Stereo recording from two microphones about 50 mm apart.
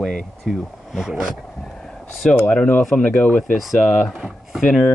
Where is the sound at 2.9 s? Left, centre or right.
Left.